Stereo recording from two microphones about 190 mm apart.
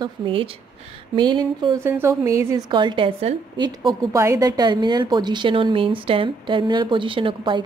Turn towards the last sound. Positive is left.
turn(degrees=-25)  # may be behind; listen again after turning